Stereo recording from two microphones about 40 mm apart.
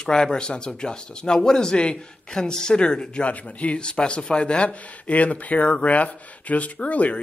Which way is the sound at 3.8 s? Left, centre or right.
Left.